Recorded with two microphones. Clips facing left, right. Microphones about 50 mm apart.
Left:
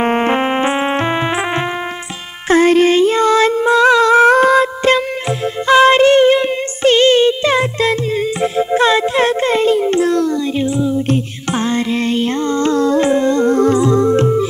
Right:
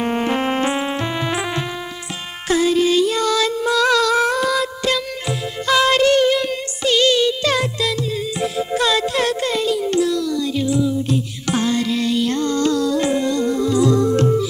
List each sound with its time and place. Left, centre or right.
0.0 s music: left
2.4 s a sound: left
5.7 s music: left
13.7 s music: left